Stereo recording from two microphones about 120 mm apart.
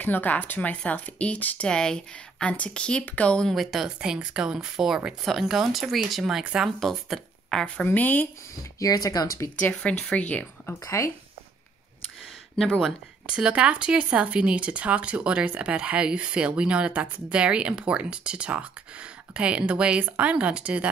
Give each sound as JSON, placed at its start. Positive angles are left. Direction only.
{"t": 0.0, "sound": "speech", "side_deg": 15}
{"t": 7.6, "sound": "speech", "side_deg": 10}
{"t": 8.7, "sound": "speech", "side_deg": 30}
{"t": 9.6, "sound": "speech", "side_deg": 10}
{"t": 12.5, "sound": "speech", "side_deg": 0}